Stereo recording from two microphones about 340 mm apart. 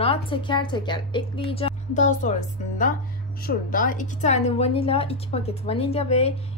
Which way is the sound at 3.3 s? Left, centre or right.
Left.